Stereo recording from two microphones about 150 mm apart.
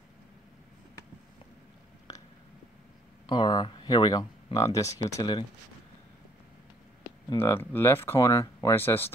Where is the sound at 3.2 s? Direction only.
30° left (ahead or behind).